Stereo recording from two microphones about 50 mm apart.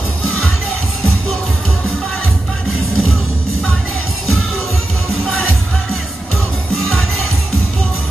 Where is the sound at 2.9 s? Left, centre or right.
Centre.